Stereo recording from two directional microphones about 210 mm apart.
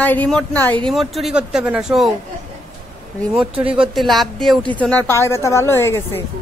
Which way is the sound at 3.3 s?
5° right (ahead or behind).